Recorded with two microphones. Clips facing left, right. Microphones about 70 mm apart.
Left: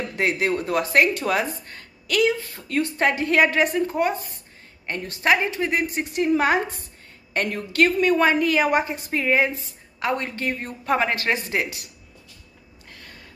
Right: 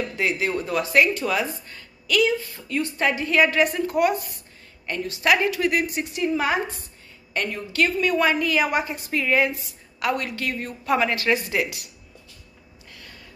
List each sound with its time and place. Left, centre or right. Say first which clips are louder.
0.1 s a woman's voice: left 5 dB; left
5.2 s a woman's voice: even; left